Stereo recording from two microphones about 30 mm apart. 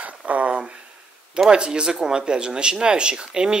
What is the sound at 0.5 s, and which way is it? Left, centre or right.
Speech, right.